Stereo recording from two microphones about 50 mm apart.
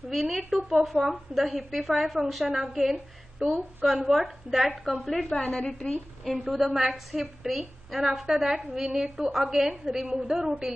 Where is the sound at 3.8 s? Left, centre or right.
Centre.